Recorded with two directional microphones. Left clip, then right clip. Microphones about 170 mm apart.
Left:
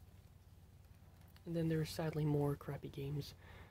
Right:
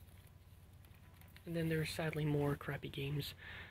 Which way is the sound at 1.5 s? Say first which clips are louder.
Right 1 dB; 35° left (ahead or behind).